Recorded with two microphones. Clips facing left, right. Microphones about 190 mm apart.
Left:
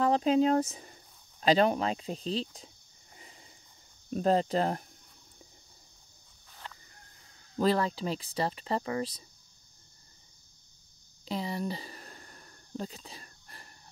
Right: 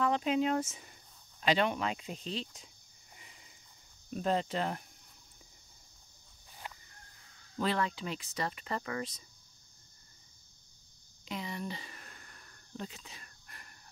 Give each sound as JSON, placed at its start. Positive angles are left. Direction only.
{"t": 0.0, "sound": "speech", "side_deg": 35}
{"t": 4.1, "sound": "speech", "side_deg": 40}
{"t": 6.6, "sound": "chicken", "side_deg": -10}
{"t": 7.5, "sound": "speech", "side_deg": 35}
{"t": 11.2, "sound": "a sound", "side_deg": 35}